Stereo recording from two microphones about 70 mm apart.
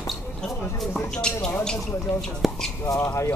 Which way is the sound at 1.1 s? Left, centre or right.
Centre.